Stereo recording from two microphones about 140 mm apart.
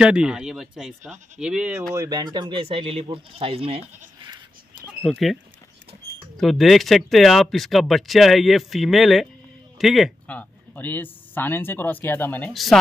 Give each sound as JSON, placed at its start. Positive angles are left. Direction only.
{"t": 0.0, "sound": "speech", "side_deg": -5}
{"t": 2.0, "sound": "speech", "side_deg": -30}
{"t": 5.0, "sound": "speech", "side_deg": 0}
{"t": 10.2, "sound": "speech", "side_deg": 10}